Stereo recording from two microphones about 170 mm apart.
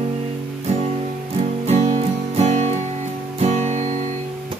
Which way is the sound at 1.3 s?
40° right (ahead or behind).